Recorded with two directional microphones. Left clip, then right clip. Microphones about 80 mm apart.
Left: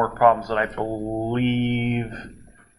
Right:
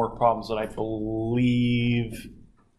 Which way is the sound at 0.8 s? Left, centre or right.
Centre.